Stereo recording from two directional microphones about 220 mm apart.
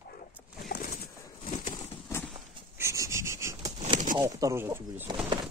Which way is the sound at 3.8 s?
35° right (ahead or behind).